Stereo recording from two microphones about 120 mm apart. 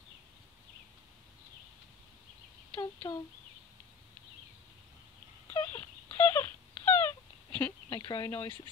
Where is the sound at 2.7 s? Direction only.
40° left (ahead or behind).